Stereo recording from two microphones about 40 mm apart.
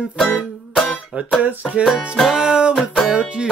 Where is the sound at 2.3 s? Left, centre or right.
Right.